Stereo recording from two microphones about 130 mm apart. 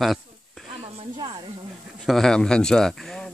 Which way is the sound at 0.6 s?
40° right (ahead or behind).